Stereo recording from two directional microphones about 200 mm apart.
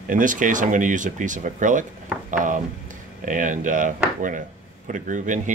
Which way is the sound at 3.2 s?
40° right (ahead or behind).